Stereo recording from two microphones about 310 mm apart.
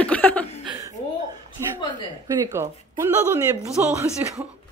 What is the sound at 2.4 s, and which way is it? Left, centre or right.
Speech, centre.